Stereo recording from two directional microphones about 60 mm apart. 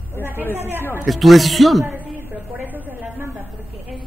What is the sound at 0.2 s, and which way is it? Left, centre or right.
Speech, right.